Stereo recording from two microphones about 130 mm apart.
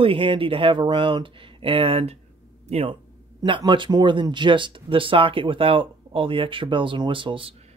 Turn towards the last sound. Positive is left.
turn(degrees=-40)  # may be behind; listen again after turning